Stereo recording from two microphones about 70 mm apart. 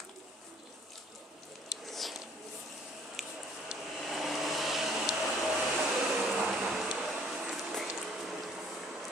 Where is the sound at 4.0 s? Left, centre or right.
Centre.